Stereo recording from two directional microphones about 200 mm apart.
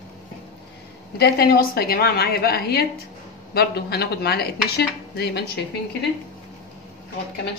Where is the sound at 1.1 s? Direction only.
50° left (ahead or behind).